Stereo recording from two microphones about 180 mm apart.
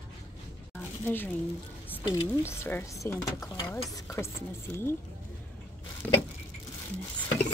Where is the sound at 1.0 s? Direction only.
10° left (ahead or behind).